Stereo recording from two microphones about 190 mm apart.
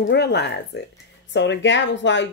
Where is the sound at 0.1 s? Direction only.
60° left (ahead or behind).